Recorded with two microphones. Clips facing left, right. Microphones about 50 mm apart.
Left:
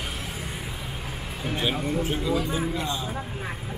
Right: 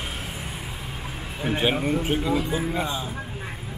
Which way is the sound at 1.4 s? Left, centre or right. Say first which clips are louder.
Right 4 dB; right.